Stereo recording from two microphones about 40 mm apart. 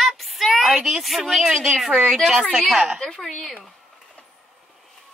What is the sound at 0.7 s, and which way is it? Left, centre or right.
A woman's voice, centre.